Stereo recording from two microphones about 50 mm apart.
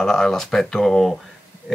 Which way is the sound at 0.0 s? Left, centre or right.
Centre.